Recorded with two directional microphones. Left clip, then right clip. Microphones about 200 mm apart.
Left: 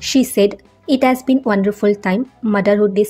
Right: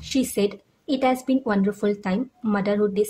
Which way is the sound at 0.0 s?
25° left (ahead or behind).